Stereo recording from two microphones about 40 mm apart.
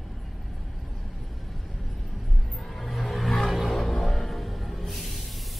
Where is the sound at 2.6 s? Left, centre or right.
Centre.